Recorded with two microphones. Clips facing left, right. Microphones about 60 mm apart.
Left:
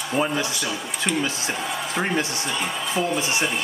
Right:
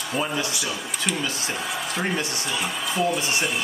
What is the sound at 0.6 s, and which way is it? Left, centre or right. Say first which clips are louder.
Speech: left 2 dB; centre.